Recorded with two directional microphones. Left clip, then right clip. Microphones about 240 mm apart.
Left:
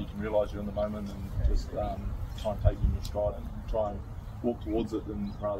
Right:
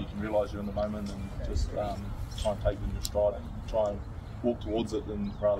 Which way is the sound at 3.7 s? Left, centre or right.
Right.